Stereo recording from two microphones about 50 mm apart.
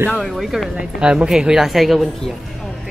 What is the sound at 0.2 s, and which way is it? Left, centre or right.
Speech, centre.